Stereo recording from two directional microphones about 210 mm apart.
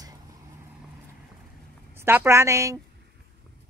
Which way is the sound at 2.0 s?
10° right (ahead or behind).